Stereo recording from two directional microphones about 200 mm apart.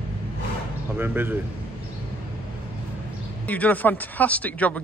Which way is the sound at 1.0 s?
10° right (ahead or behind).